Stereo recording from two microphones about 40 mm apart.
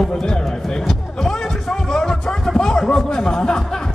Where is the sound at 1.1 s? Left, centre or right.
Centre.